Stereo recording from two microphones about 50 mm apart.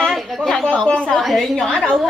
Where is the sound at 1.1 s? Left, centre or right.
Centre.